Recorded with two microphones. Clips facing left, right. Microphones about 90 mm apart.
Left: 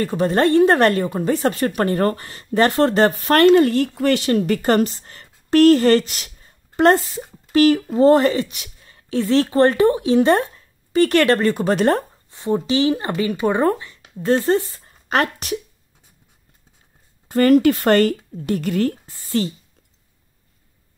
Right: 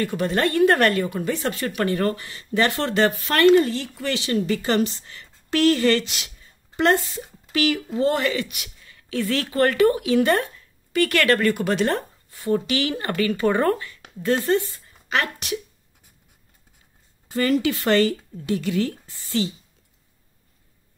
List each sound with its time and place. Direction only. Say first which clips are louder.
0.0 s speech: left 5 dB; 35° left (ahead or behind)
7.5 s speech: left 8 dB; 40° left (ahead or behind)
11.7 s speech: left 5 dB; 40° left (ahead or behind)
12.3 s speech: left 2 dB; 25° left (ahead or behind)
14.2 s a woman's voice: left 3 dB; 35° left (ahead or behind)
17.3 s speech: left 8 dB; 50° left (ahead or behind)